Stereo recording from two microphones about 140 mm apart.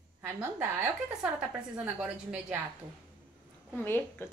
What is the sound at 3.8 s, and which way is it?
Speech, 15° left (ahead or behind).